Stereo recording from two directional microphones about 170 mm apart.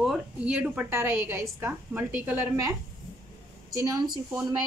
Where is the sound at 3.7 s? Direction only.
20° right (ahead or behind).